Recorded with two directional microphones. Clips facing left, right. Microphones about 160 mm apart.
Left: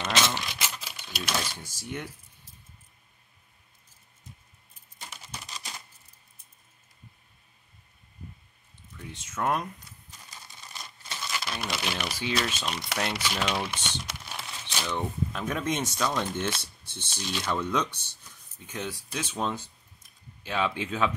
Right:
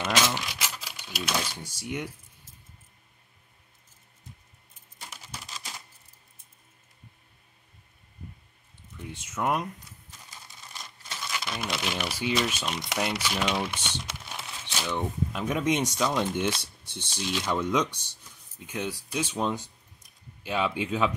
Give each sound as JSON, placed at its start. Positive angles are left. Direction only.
{"t": 0.0, "sound": "typewriter", "side_deg": -10}
{"t": 5.0, "sound": "typewriter", "side_deg": -5}
{"t": 8.9, "sound": "speech", "side_deg": -10}
{"t": 11.1, "sound": "crumpling", "side_deg": 0}
{"t": 12.2, "sound": "speech", "side_deg": -10}
{"t": 12.7, "sound": "speech", "side_deg": -20}
{"t": 13.0, "sound": "speech", "side_deg": -5}